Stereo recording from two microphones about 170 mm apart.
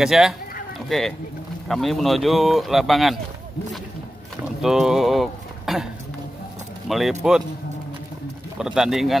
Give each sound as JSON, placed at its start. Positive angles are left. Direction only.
{"t": 0.0, "sound": "speech", "side_deg": 0}
{"t": 4.6, "sound": "speech", "side_deg": 0}
{"t": 6.9, "sound": "speech", "side_deg": 0}
{"t": 8.5, "sound": "speech", "side_deg": -5}